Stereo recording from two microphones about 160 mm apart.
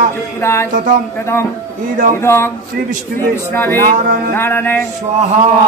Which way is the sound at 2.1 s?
15° left (ahead or behind).